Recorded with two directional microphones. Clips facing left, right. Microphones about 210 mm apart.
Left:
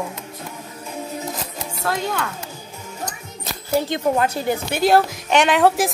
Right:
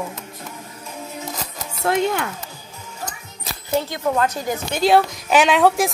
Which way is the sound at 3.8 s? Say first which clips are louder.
Left 2 dB; 20° left (ahead or behind).